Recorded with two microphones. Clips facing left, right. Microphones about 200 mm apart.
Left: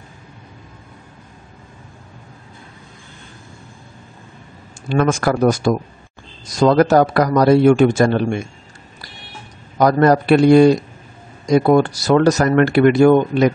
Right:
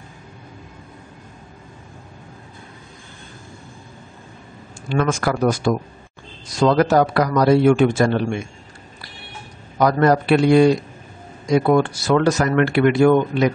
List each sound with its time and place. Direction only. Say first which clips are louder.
4.9 s a man's voice: left 3 dB; 45° left (ahead or behind)
9.8 s a man's voice: left 3 dB; 40° left (ahead or behind)